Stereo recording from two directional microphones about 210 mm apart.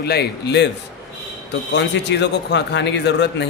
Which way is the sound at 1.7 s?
55° left (ahead or behind).